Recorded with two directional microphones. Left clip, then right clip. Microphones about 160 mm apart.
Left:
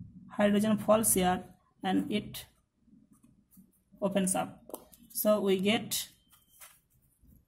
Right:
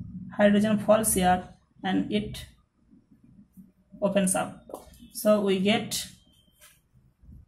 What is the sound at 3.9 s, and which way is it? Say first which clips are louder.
Speech: right 6 dB; 40° left (ahead or behind).